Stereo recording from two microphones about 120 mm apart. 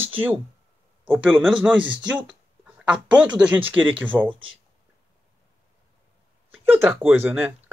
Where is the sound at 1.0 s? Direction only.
10° right (ahead or behind).